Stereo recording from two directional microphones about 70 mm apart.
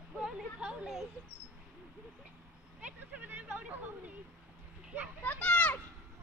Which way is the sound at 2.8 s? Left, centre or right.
Right.